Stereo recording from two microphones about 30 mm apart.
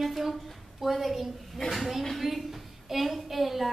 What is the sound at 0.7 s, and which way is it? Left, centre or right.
A woman's voice, centre.